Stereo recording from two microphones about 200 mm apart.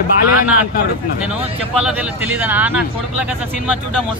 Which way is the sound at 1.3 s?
30° right (ahead or behind).